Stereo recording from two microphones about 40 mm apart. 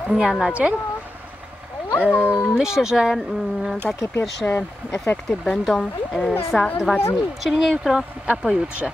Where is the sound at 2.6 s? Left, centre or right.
Centre.